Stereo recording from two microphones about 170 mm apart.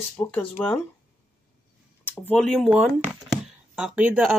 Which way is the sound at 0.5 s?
5° left (ahead or behind).